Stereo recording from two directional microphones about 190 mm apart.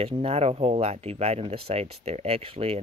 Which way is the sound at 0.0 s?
30° right (ahead or behind).